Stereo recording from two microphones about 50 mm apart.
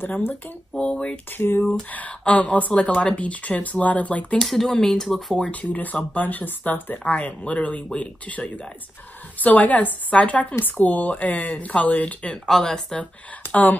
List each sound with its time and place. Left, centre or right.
0.0 s speech: left
0.7 s speech: left
1.3 s a sound: left
1.9 s speech: left
4.4 s speech: centre
5.5 s speech: left
12.4 s speech: centre